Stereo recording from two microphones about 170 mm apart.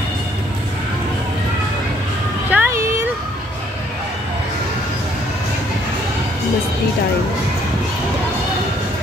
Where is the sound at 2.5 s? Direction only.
15° right (ahead or behind).